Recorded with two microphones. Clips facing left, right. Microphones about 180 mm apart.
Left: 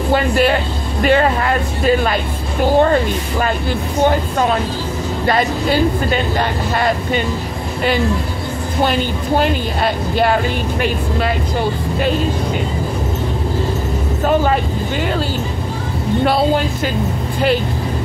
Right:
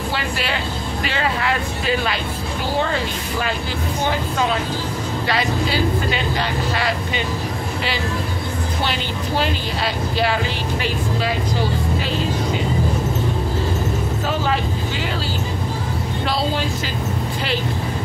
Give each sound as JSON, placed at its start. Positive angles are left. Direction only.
{"t": 0.1, "sound": "music", "side_deg": 50}
{"t": 1.0, "sound": "speech", "side_deg": 50}
{"t": 2.8, "sound": "vehicle", "side_deg": 50}
{"t": 4.0, "sound": "speech", "side_deg": 50}
{"t": 9.4, "sound": "speech", "side_deg": 50}
{"t": 14.2, "sound": "speech", "side_deg": 50}
{"t": 16.3, "sound": "speech", "side_deg": 55}